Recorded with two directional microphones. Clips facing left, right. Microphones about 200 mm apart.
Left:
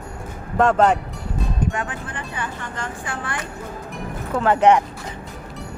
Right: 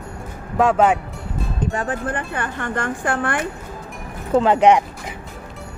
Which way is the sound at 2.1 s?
55° right (ahead or behind).